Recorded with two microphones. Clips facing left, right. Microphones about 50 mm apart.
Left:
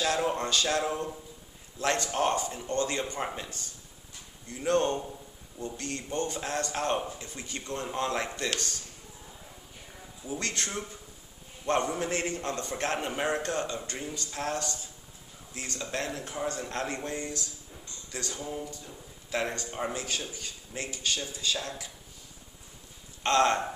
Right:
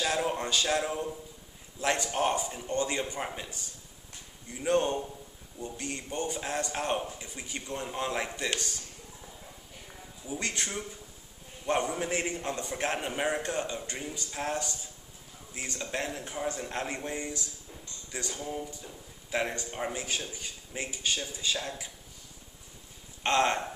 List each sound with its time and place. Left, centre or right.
0.0 s a man's voice: centre
10.4 s a man's voice: centre
23.2 s a man's voice: centre